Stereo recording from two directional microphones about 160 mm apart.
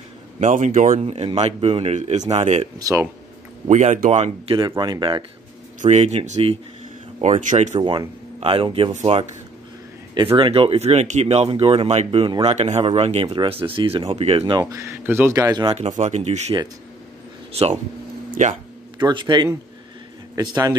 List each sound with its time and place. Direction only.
0.4 s a man's voice: 55° right (ahead or behind)
0.9 s speech: 40° right (ahead or behind)
2.8 s speech: 20° right (ahead or behind)
3.6 s speech: 50° right (ahead or behind)
4.6 s speech: 30° right (ahead or behind)
5.8 s speech: 45° right (ahead or behind)
7.8 s speech: 30° right (ahead or behind)
10.3 s speech: 35° right (ahead or behind)
12.5 s speech: 45° right (ahead or behind)
14.6 s speech: 20° right (ahead or behind)
16.0 s speech: 45° right (ahead or behind)
18.3 s speech: 50° right (ahead or behind)
18.9 s speech: 30° right (ahead or behind)